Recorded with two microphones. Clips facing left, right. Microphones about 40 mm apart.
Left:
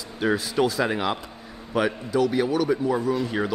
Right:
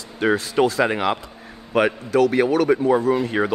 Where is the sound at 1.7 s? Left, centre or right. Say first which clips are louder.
Right 5 dB; right.